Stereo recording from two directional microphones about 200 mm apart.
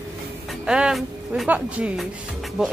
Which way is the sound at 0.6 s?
5° right (ahead or behind).